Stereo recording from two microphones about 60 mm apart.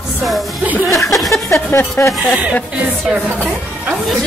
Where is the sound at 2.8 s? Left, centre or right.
Centre.